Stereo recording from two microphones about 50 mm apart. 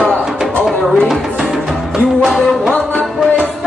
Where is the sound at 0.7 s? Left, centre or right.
Centre.